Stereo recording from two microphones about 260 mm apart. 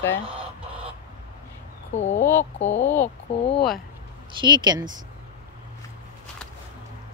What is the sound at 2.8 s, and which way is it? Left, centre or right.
Speech, centre.